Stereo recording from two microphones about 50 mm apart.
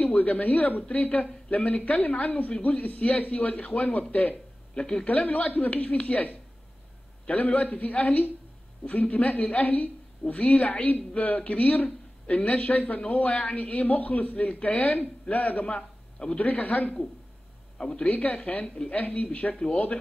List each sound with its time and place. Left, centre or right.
0.0 s speech: left
4.7 s speech: centre
5.0 s speech: left
15.6 s a sound: centre
16.3 s speech: left
17.7 s a man's voice: centre
18.0 s speech: left